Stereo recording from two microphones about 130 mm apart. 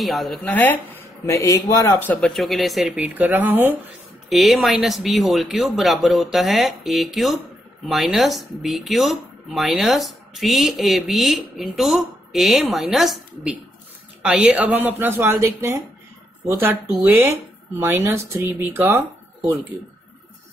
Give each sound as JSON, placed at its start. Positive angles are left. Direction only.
{"t": 0.0, "sound": "speech", "side_deg": 0}
{"t": 0.4, "sound": "speech", "side_deg": 10}
{"t": 1.2, "sound": "a man's voice", "side_deg": 25}
{"t": 2.1, "sound": "speech", "side_deg": 0}
{"t": 3.0, "sound": "speech", "side_deg": -15}
{"t": 4.3, "sound": "speech", "side_deg": 0}
{"t": 17.0, "sound": "speech", "side_deg": -20}